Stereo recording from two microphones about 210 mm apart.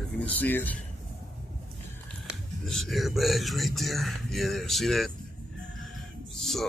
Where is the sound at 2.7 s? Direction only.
Centre (ahead or behind).